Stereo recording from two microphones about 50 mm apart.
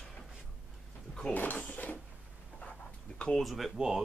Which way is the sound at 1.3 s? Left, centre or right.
Left.